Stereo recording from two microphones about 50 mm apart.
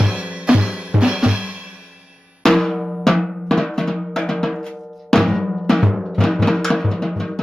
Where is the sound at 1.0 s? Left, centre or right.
Centre.